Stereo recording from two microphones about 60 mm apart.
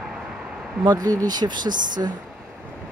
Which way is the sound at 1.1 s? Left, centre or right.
Right.